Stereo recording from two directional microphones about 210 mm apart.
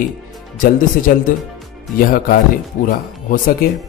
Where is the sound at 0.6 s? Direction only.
40° left (ahead or behind).